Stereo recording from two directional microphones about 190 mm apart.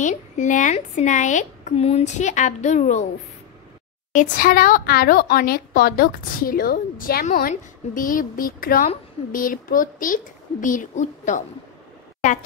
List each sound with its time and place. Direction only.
0.0 s a woman's voice: 40° left (ahead or behind)
4.1 s a woman's voice: 45° left (ahead or behind)